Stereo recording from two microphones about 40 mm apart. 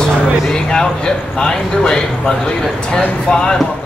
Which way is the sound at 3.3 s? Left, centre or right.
Left.